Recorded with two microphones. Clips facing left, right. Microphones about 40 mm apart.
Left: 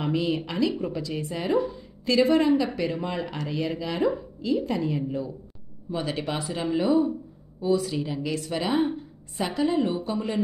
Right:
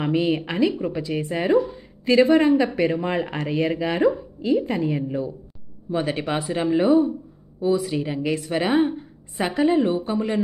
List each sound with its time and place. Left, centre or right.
0.0 s speech: right
1.7 s a sound: right
2.3 s speech: right
7.7 s speech: centre
8.0 s a woman's voice: right